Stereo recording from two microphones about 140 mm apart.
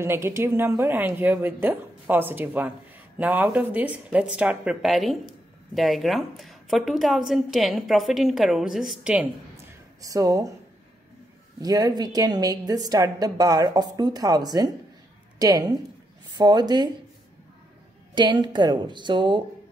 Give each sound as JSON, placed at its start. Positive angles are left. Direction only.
{"t": 0.0, "sound": "a woman's voice", "side_deg": -20}
{"t": 10.0, "sound": "a woman's voice", "side_deg": -25}
{"t": 11.6, "sound": "a woman's voice", "side_deg": -25}
{"t": 18.1, "sound": "a woman's voice", "side_deg": -35}